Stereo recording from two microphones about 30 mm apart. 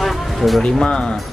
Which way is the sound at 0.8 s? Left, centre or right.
Left.